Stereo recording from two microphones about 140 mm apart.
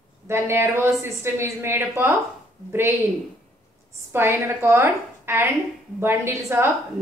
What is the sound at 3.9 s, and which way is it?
A woman's voice, 15° right (ahead or behind).